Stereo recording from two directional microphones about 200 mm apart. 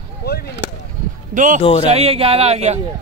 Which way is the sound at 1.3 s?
40° right (ahead or behind).